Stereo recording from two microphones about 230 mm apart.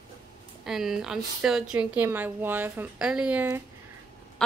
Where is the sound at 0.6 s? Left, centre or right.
Centre.